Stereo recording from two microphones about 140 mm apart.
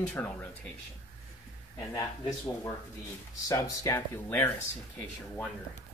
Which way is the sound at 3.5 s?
20° left (ahead or behind).